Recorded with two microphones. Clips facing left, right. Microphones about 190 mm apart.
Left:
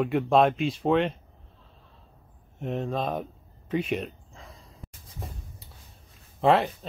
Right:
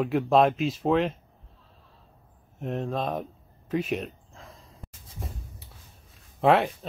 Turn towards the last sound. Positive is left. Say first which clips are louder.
# right 1 dB
turn(degrees=-5)  # may be behind; listen again after turning